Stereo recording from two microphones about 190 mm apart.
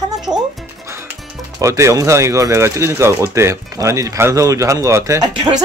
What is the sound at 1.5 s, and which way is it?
Speech, 15° right (ahead or behind).